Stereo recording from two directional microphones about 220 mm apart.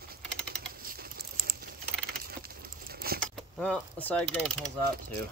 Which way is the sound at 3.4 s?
5° left (ahead or behind).